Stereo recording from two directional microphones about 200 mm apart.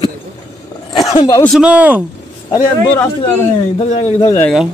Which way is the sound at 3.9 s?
30° left (ahead or behind).